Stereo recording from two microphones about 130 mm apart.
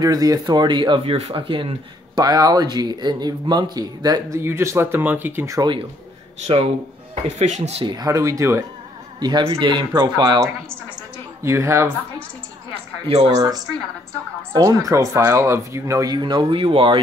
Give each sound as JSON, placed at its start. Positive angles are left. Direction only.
{"t": 0.0, "sound": "speech", "side_deg": -30}
{"t": 2.1, "sound": "speech", "side_deg": -30}
{"t": 5.6, "sound": "speech", "side_deg": -35}
{"t": 6.4, "sound": "speech", "side_deg": -50}
{"t": 7.2, "sound": "speech", "side_deg": -60}
{"t": 7.8, "sound": "speech", "side_deg": -30}
{"t": 9.2, "sound": "speech", "side_deg": -40}
{"t": 10.7, "sound": "a woman's voice", "side_deg": -20}
{"t": 13.1, "sound": "speech", "side_deg": -55}
{"t": 13.4, "sound": "speech", "side_deg": -30}